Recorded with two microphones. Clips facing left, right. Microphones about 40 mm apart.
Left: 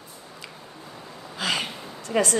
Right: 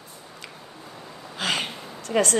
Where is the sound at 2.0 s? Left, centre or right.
Right.